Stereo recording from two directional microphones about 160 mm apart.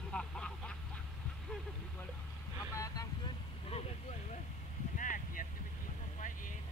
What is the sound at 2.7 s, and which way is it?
Vehicle, 20° left (ahead or behind).